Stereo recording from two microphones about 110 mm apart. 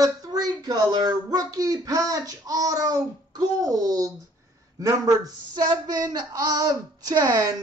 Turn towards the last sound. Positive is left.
turn(degrees=-35)  # may be behind; listen again after turning